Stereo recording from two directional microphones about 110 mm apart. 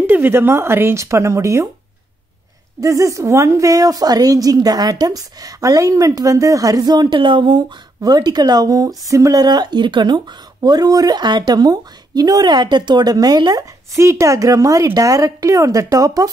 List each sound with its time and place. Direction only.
0.0 s speech: 20° right (ahead or behind)
2.8 s a woman's voice: 30° right (ahead or behind)
13.9 s a woman's voice: 25° right (ahead or behind)